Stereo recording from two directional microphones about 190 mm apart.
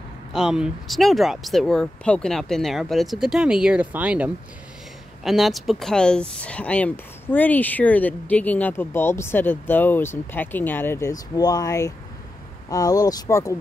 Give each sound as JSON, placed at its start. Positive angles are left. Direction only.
{"t": 0.3, "sound": "speech", "side_deg": -5}